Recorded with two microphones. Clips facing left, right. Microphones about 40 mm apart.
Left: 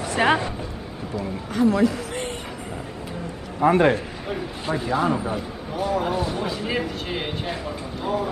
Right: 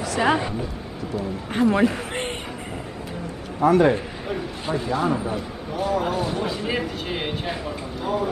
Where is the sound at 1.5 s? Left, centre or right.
Right.